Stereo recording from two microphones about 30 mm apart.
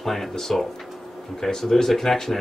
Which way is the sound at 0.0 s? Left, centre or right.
Centre.